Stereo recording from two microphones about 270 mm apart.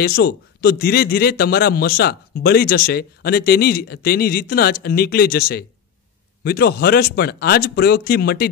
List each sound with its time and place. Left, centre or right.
0.0 s a man's voice: left